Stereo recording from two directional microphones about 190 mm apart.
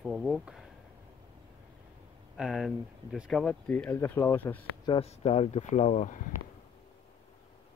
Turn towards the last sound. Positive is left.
turn(degrees=40)  # may be behind; listen again after turning